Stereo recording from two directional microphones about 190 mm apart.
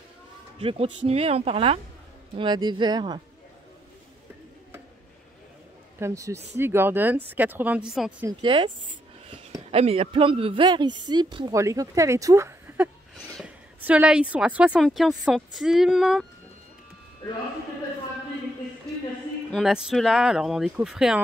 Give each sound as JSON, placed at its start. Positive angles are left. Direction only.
{"t": 0.6, "sound": "speech", "side_deg": -30}
{"t": 5.9, "sound": "a man's voice", "side_deg": -15}
{"t": 8.3, "sound": "speech", "side_deg": -25}
{"t": 19.5, "sound": "speech", "side_deg": 0}